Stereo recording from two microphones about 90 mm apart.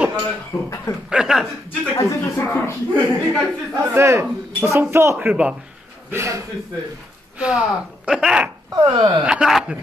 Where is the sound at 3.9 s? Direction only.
30° right (ahead or behind).